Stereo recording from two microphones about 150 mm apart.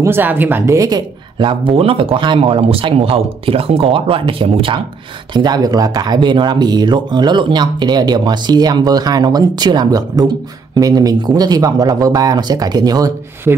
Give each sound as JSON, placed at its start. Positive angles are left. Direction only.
{"t": 0.0, "sound": "speech", "side_deg": -15}